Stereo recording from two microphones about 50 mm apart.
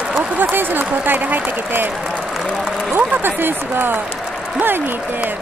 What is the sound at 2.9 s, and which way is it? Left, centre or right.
Speech, right.